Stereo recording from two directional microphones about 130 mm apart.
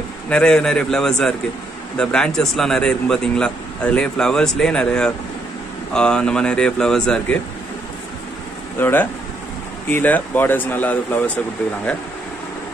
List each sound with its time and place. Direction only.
0.3 s a man's voice: 5° left (ahead or behind)
8.7 s speech: 15° left (ahead or behind)